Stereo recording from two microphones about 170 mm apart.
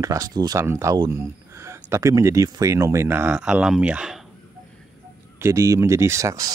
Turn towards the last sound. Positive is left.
turn(degrees=-20)  # may be behind; listen again after turning